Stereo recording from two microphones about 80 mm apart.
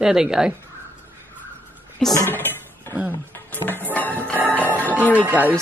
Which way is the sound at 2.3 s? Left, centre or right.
Left.